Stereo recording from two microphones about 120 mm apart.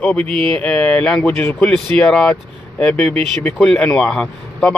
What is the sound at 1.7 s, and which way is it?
Speech, 5° left (ahead or behind).